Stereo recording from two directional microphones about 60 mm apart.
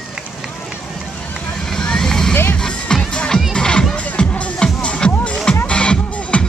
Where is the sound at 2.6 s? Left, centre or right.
Centre.